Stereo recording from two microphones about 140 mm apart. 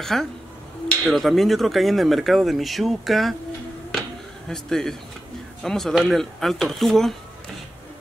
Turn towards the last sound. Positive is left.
turn(degrees=0)  # may be behind; listen again after turning